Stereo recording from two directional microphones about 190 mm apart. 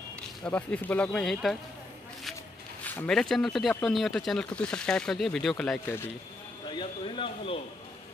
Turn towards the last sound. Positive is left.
turn(degrees=25)  # may be behind; listen again after turning